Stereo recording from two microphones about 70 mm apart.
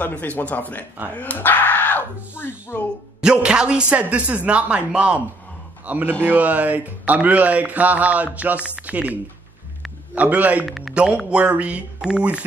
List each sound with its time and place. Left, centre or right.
0.0 s speech: left
3.2 s a man's voice: centre
10.6 s speech: centre
11.0 s a man's voice: centre